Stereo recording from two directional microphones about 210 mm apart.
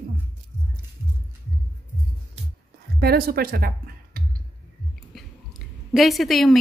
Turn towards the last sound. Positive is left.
turn(degrees=0)  # may be behind; listen again after turning